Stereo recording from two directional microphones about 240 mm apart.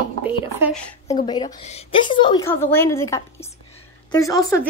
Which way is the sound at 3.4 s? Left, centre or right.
Centre.